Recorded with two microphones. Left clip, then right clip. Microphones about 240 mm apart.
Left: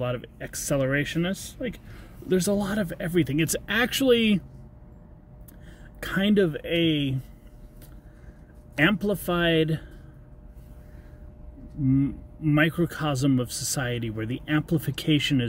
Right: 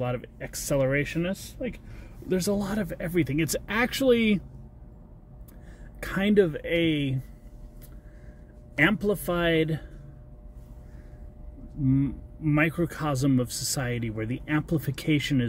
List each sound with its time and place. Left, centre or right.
0.0 s speech: centre
5.9 s speech: centre
8.7 s speech: centre
11.9 s speech: centre